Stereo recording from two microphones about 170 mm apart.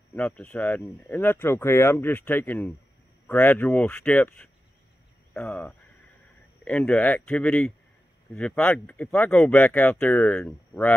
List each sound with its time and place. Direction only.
0.1 s speech: 10° left (ahead or behind)